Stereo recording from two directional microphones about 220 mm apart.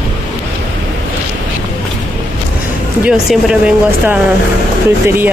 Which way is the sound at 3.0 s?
5° right (ahead or behind).